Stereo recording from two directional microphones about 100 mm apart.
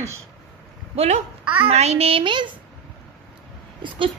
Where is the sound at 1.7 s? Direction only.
90° right.